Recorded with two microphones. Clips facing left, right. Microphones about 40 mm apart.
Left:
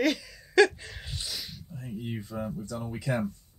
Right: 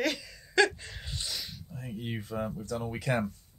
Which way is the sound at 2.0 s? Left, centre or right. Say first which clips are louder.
Right 1 dB; right.